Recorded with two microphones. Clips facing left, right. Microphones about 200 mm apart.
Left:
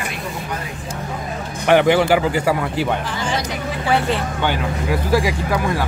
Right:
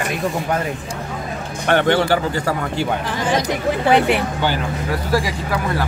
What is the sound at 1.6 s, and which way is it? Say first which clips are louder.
Speech: left 2 dB; 10° left (ahead or behind).